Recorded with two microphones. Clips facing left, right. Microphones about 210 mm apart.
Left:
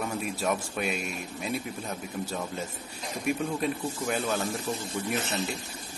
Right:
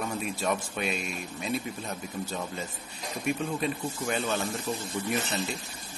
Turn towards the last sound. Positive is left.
turn(degrees=10)  # may be behind; listen again after turning